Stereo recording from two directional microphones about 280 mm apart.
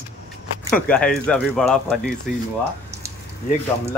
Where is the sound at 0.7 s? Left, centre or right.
Centre.